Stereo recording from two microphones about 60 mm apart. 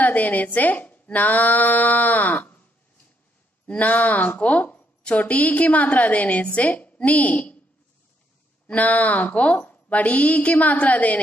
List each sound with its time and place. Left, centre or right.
0.0 s a woman's voice: left
3.6 s a woman's voice: left
8.6 s a woman's voice: left